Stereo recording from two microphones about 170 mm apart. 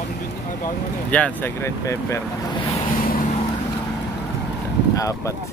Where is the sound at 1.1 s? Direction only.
10° left (ahead or behind).